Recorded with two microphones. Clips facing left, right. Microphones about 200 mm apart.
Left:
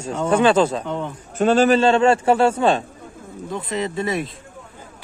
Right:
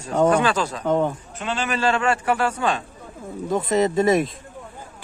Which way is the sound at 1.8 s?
25° left (ahead or behind).